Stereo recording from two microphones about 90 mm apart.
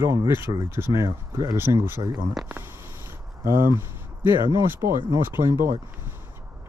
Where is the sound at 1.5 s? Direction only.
25° right (ahead or behind).